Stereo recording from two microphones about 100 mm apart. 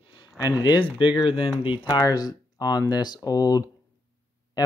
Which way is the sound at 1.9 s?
40° left (ahead or behind).